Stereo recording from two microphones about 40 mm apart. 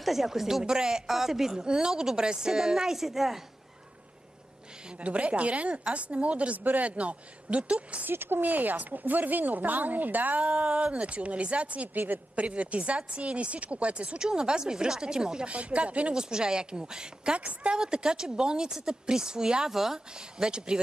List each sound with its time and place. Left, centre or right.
0.0 s a woman's voice: centre
1.0 s a woman's voice: centre
1.6 s a woman's voice: centre
4.9 s a woman's voice: right
8.1 s speech: right
8.4 s speech: right
10.4 s a woman's voice: right
14.1 s speech: centre
15.5 s a woman's voice: right
16.2 s speech: centre